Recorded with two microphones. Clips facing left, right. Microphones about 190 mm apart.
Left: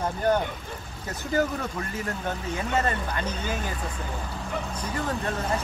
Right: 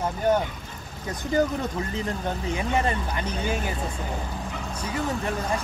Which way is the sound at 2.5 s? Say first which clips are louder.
Right 1 dB; 15° right (ahead or behind).